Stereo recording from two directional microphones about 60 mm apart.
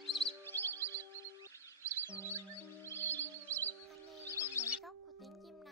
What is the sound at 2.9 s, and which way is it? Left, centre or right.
Music, left.